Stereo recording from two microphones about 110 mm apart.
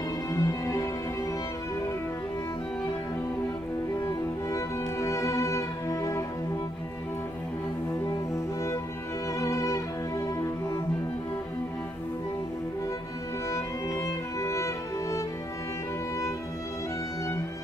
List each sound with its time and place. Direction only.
0.3 s music: 30° left (ahead or behind)
4.0 s music: 30° left (ahead or behind)
9.4 s music: 30° left (ahead or behind)
13.5 s music: 25° left (ahead or behind)